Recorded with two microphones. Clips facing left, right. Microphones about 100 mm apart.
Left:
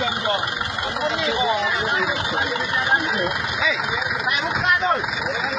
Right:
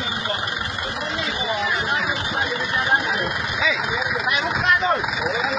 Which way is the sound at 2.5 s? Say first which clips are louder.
Right 2 dB; 35° left (ahead or behind).